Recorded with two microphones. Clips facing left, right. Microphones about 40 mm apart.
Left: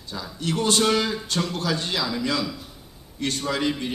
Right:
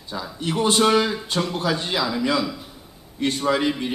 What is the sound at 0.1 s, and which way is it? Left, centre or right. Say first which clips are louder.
A man's voice: right 2 dB; centre.